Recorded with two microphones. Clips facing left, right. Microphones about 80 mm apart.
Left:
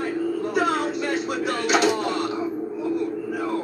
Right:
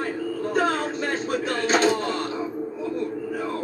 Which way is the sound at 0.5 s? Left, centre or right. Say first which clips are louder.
Right 1 dB; right.